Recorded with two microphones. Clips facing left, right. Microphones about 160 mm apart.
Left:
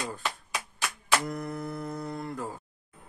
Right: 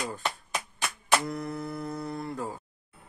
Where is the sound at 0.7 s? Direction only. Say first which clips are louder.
Right 1 dB; 25° right (ahead or behind).